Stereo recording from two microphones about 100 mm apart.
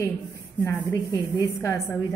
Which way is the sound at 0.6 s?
20° left (ahead or behind).